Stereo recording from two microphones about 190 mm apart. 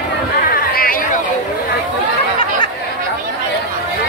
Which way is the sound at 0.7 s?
50° left (ahead or behind).